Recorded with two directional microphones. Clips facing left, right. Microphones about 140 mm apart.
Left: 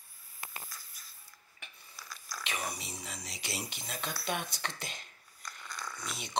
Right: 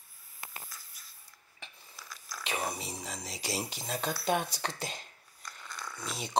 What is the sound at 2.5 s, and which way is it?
Speech, 30° right (ahead or behind).